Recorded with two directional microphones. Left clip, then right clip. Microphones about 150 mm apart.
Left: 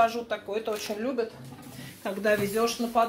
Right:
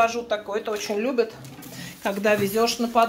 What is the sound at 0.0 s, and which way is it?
Speech, 5° right (ahead or behind).